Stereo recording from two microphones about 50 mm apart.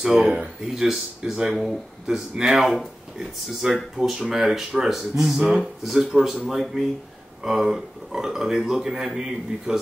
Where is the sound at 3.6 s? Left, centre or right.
Centre.